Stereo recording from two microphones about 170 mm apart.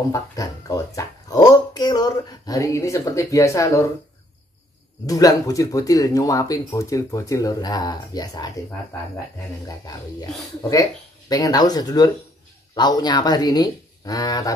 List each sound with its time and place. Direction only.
0.1 s speech: 20° left (ahead or behind)
5.0 s speech: 20° left (ahead or behind)
9.7 s speech: 20° left (ahead or behind)